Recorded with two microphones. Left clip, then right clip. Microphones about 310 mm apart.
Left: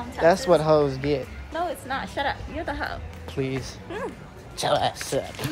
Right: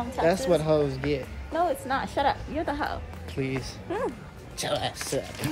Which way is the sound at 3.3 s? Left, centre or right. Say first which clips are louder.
Left 2 dB; centre.